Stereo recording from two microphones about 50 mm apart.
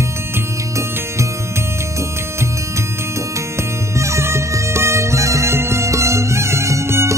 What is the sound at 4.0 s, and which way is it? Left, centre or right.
Music, right.